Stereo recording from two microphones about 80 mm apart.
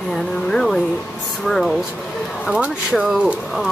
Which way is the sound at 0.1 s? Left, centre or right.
Centre.